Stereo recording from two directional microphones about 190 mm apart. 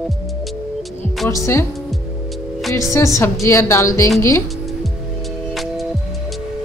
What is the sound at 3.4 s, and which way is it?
A woman's voice, 15° left (ahead or behind).